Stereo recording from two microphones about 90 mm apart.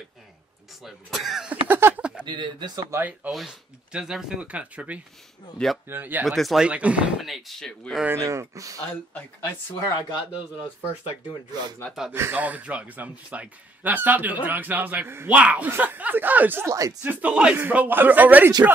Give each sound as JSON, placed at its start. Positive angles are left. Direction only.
{"t": 0.8, "sound": "speech", "side_deg": 0}
{"t": 1.5, "sound": "a man's voice", "side_deg": -25}
{"t": 2.2, "sound": "speech", "side_deg": -55}
{"t": 2.9, "sound": "a man's voice", "side_deg": -20}
{"t": 3.3, "sound": "a man's voice", "side_deg": -5}
{"t": 6.2, "sound": "speech", "side_deg": 0}
{"t": 6.7, "sound": "a man's voice", "side_deg": -15}
{"t": 7.2, "sound": "speech", "side_deg": 0}
{"t": 8.2, "sound": "speech", "side_deg": -35}
{"t": 9.8, "sound": "speech", "side_deg": 40}
{"t": 12.1, "sound": "a man's voice", "side_deg": -25}
{"t": 16.6, "sound": "speech", "side_deg": -40}
{"t": 17.0, "sound": "a man's voice", "side_deg": -20}
{"t": 17.6, "sound": "a man's voice", "side_deg": -20}